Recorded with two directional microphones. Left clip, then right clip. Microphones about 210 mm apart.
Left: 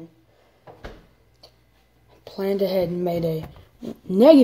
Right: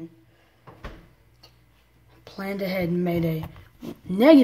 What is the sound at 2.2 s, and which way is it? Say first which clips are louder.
Speech: left 7 dB; 10° left (ahead or behind).